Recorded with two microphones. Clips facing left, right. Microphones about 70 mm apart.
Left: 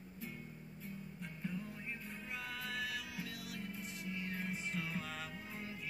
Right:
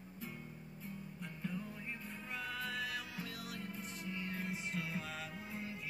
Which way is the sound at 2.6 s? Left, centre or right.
Right.